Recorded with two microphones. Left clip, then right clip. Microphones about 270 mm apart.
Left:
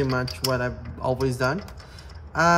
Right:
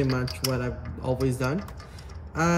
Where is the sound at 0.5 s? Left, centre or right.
Left.